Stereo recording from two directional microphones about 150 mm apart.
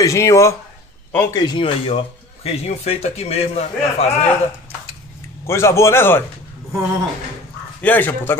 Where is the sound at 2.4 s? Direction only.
45° left (ahead or behind).